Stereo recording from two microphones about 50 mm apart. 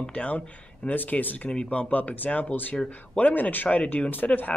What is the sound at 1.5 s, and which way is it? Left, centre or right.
Speech, centre.